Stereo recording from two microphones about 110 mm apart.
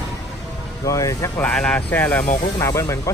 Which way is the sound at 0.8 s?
30° left (ahead or behind).